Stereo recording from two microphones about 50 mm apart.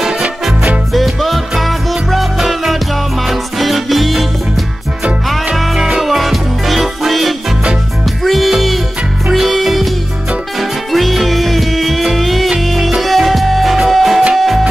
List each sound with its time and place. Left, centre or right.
0.5 s music: centre
0.9 s music: centre
5.5 s music: centre